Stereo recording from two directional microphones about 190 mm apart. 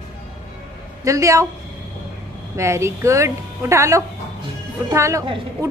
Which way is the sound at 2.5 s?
15° right (ahead or behind).